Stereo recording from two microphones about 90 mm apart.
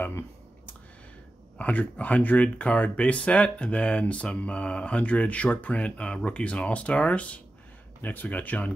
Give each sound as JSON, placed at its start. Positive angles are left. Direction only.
{"t": 1.6, "sound": "speech", "side_deg": 15}